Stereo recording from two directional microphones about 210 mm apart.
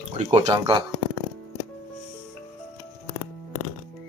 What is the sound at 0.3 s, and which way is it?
Speech, 30° right (ahead or behind).